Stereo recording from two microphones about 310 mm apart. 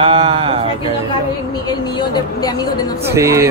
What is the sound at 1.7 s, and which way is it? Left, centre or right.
A woman's voice, centre.